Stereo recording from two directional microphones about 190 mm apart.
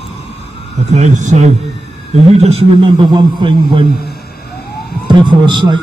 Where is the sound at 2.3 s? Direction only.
35° right (ahead or behind).